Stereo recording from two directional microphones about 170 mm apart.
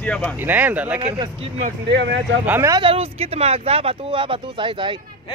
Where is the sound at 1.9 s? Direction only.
90° right.